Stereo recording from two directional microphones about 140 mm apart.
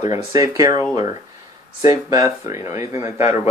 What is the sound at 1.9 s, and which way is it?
Speech, 25° right (ahead or behind).